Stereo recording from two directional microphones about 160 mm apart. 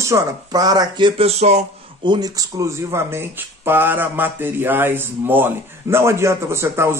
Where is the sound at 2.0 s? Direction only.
25° right (ahead or behind).